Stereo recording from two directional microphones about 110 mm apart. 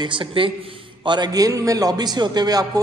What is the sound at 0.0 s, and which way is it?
A man's voice, 45° right (ahead or behind).